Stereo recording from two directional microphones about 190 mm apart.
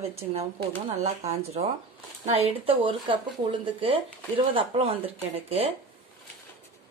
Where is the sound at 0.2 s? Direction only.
30° right (ahead or behind).